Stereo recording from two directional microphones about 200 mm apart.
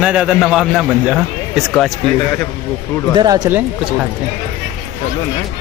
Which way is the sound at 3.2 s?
20° right (ahead or behind).